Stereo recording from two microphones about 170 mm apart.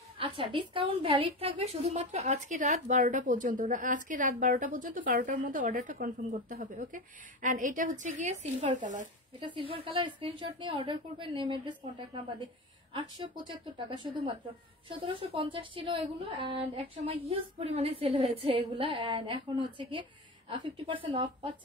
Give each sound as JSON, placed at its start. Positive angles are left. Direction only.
{"t": 0.2, "sound": "a woman's voice", "side_deg": -30}
{"t": 9.5, "sound": "a woman's voice", "side_deg": -30}
{"t": 12.9, "sound": "a woman's voice", "side_deg": -30}